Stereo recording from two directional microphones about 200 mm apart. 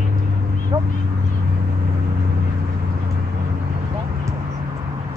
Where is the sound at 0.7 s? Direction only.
20° right (ahead or behind).